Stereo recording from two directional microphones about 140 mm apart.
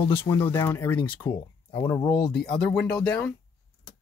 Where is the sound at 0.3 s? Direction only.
15° left (ahead or behind).